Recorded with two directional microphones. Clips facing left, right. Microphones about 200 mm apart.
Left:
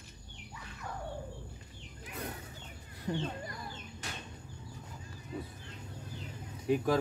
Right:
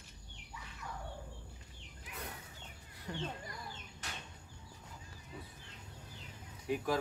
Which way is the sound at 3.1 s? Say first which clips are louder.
Left 8 dB; 25° left (ahead or behind).